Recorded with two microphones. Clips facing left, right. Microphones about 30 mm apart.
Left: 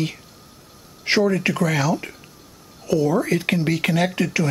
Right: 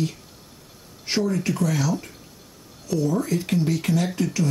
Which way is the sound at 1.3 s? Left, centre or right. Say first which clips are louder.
Left 3 dB; left.